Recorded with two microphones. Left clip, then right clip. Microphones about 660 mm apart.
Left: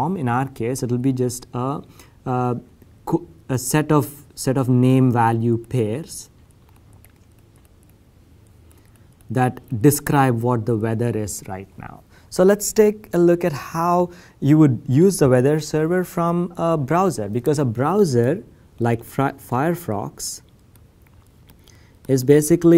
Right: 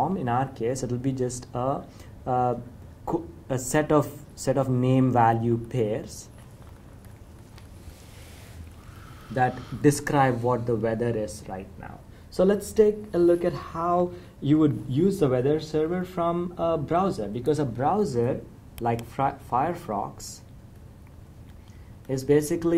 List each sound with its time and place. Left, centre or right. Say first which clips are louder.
0.0 s speech: left 3 dB; left
9.3 s speech: left 3 dB; left
12.4 s a woman's voice: left 6 dB; left
22.0 s speech: left 7 dB; left